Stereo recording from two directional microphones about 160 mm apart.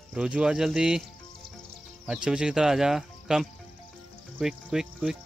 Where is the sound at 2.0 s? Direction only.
5° right (ahead or behind).